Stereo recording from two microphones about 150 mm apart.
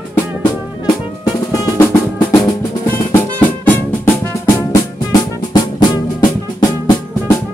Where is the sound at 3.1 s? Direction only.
10° left (ahead or behind).